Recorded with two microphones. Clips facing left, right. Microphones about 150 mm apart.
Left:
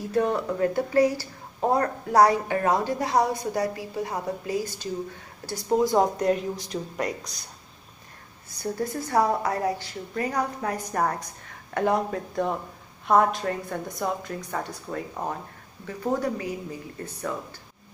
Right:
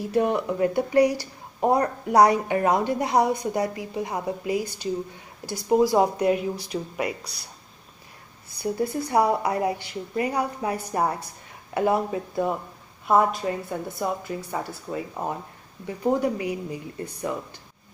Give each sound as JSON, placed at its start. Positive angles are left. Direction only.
{"t": 0.1, "sound": "speech", "side_deg": -15}
{"t": 8.5, "sound": "a woman's voice", "side_deg": -10}